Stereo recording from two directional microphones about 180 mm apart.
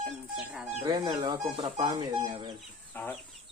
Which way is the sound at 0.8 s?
25° right (ahead or behind).